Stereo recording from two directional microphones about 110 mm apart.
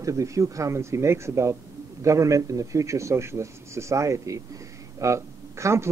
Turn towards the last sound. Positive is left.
turn(degrees=-25)  # may be behind; listen again after turning